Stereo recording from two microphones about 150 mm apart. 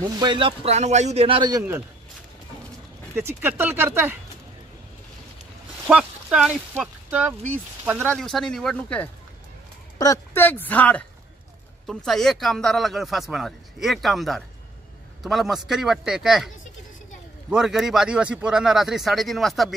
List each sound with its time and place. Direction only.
0.0 s speech: 30° right (ahead or behind)
3.2 s speech: 15° right (ahead or behind)
5.9 s a sound: 5° right (ahead or behind)
6.8 s speech: 10° right (ahead or behind)
8.1 s speech: 5° left (ahead or behind)
9.9 s speech: 20° left (ahead or behind); by 16.4 s centre (ahead or behind)
17.5 s speech: 5° right (ahead or behind)